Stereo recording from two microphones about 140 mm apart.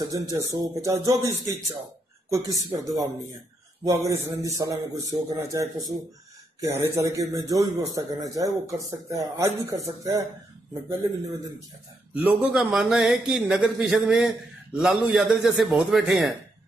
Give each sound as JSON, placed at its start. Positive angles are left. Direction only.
{"t": 0.0, "sound": "a man's voice", "side_deg": -25}
{"t": 12.1, "sound": "speech", "side_deg": -10}